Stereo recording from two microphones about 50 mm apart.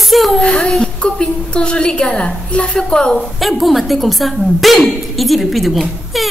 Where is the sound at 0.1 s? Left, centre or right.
Centre.